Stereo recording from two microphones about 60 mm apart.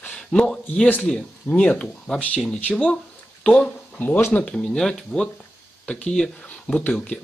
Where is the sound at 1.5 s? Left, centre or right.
Left.